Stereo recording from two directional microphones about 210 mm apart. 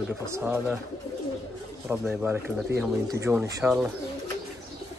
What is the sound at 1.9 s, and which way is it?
Speech, 10° right (ahead or behind).